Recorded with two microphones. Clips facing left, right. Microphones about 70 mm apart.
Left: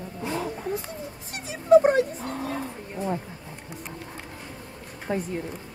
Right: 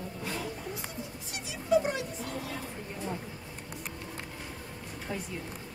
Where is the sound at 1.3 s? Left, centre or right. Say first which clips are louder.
Left 10 dB; left.